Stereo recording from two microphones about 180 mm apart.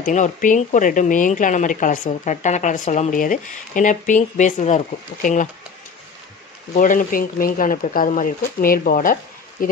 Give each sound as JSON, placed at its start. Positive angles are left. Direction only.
{"t": 0.0, "sound": "speech", "side_deg": 45}
{"t": 6.7, "sound": "speech", "side_deg": 45}